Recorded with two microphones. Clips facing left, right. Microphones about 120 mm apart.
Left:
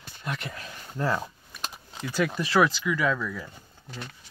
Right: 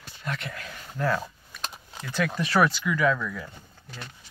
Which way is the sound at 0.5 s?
25° left (ahead or behind).